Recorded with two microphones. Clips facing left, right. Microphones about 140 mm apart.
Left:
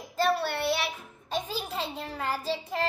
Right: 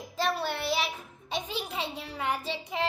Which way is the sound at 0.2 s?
Centre (ahead or behind).